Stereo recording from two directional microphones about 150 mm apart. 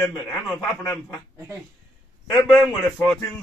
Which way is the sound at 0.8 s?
20° left (ahead or behind).